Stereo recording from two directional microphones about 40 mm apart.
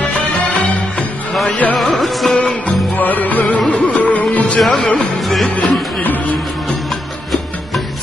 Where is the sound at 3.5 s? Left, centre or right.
Left.